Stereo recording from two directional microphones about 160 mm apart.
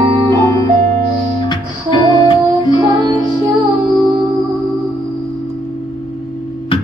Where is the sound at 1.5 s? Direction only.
30° left (ahead or behind).